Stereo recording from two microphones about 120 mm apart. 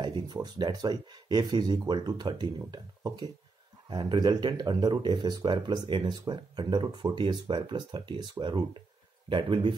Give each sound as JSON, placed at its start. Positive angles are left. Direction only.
{"t": 0.0, "sound": "speech", "side_deg": -35}